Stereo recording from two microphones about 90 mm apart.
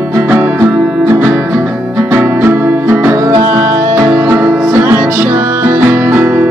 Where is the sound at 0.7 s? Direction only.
5° right (ahead or behind).